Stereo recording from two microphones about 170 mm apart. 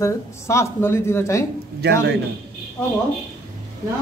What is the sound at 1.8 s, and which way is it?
Speech, 75° right (ahead or behind).